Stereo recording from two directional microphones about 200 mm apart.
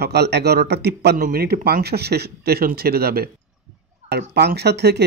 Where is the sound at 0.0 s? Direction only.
55° right (ahead or behind).